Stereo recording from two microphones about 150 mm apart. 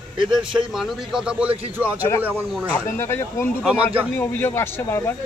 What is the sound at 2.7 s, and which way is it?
Speech, 15° left (ahead or behind).